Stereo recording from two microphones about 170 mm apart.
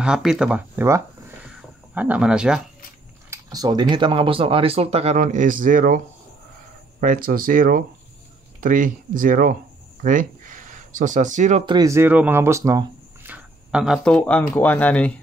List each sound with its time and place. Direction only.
0.0 s speech: 5° right (ahead or behind)
3.3 s speech: 20° right (ahead or behind); by 11.6 s 45° right (ahead or behind)
11.6 s speech: 25° right (ahead or behind); by 15.1 s 10° left (ahead or behind)